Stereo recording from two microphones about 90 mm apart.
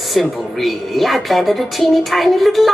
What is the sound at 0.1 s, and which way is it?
A woman's voice, centre (ahead or behind).